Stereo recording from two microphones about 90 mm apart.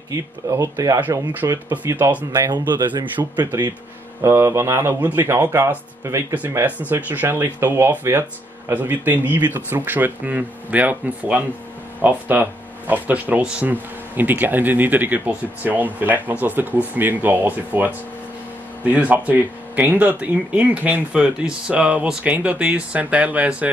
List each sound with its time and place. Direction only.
0.1 s speech: 35° right (ahead or behind)
2.3 s speech: 50° right (ahead or behind)
4.2 s speech: 30° right (ahead or behind)
6.9 s speech: 20° right (ahead or behind)